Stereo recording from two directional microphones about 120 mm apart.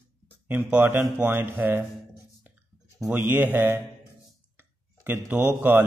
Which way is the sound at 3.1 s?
15° right (ahead or behind).